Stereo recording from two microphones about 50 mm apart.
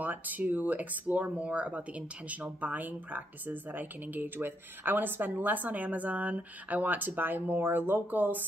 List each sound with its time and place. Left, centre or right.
0.0 s speech: right